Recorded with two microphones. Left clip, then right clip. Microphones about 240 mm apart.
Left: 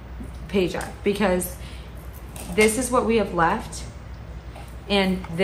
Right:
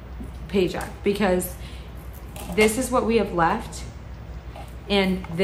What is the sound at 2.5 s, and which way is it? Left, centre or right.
A woman's voice, centre.